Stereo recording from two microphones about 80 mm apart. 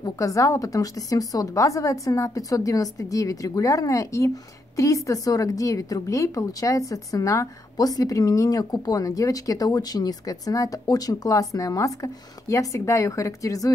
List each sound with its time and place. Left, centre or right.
0.2 s a woman's voice: left